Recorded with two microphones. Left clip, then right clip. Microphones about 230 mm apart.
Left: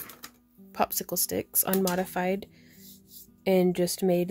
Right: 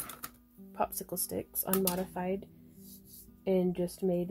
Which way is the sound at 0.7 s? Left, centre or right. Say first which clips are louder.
Left 6 dB; left.